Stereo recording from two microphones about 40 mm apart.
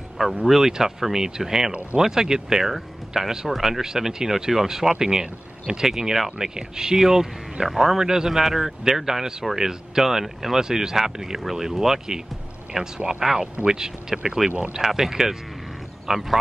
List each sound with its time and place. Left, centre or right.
0.5 s speech: centre